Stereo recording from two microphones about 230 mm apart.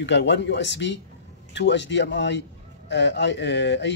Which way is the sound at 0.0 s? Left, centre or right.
Left.